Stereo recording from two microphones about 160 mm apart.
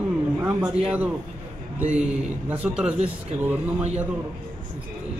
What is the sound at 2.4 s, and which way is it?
Speech, 10° right (ahead or behind).